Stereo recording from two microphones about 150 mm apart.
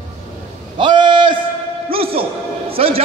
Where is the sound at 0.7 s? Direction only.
30° right (ahead or behind).